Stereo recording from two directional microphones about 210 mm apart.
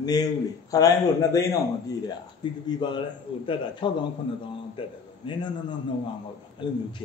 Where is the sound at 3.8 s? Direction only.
20° left (ahead or behind).